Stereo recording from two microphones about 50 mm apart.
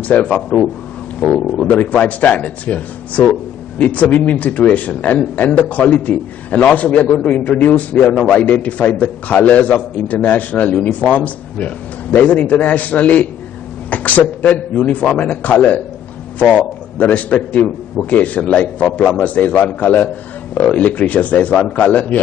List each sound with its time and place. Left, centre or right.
0.1 s a man's voice: left
1.7 s a man's voice: left